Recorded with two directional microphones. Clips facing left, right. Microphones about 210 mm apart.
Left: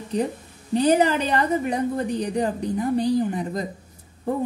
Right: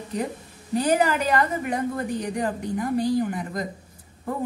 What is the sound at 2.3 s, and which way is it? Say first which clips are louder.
A woman's voice: left 3 dB; 25° left (ahead or behind).